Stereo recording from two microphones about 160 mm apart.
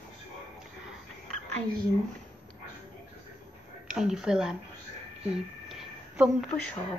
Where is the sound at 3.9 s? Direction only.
5° right (ahead or behind).